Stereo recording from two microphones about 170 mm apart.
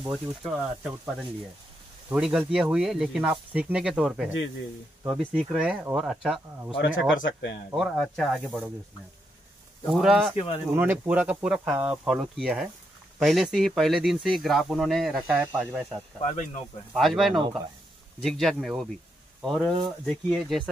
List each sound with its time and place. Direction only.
0.0 s speech: centre (ahead or behind)
7.2 s speech: 90° left
7.7 s speech: centre (ahead or behind)
9.8 s speech: centre (ahead or behind)
10.3 s speech: 35° left (ahead or behind)
10.7 s speech: 10° right (ahead or behind)
16.2 s speech: 45° left (ahead or behind)
16.9 s speech: centre (ahead or behind)
17.3 s speech: 30° right (ahead or behind)
18.2 s speech: 5° left (ahead or behind)